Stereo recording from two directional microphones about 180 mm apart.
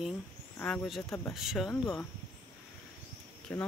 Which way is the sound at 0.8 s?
Centre (ahead or behind).